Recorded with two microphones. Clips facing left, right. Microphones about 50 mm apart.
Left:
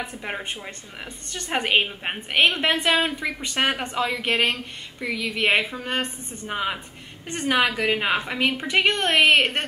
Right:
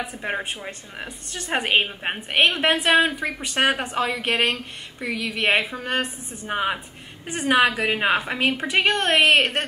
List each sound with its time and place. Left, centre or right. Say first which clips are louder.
0.0 s a woman's voice: right 3 dB; centre
6.4 s speech: right 3 dB; centre
7.5 s a woman's voice: right 2 dB; centre